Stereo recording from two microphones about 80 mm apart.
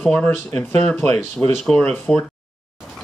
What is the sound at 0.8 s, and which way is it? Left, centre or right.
Speech, centre.